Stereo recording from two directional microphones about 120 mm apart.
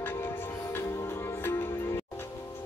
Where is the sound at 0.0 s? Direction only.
20° left (ahead or behind).